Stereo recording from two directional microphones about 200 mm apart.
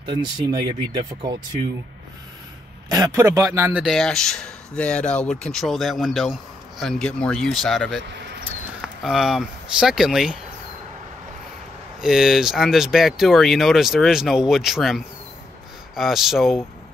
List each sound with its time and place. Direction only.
0.0 s speech: 25° right (ahead or behind)
2.9 s a man's voice: 15° right (ahead or behind); by 8.0 s centre (ahead or behind)
8.1 s a sound: 55° right (ahead or behind)
9.0 s a man's voice: centre (ahead or behind)
12.0 s a man's voice: centre (ahead or behind)